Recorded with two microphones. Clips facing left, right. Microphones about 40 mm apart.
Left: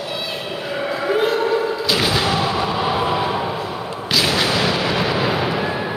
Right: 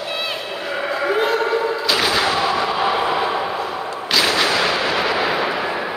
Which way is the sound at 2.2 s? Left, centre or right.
Centre.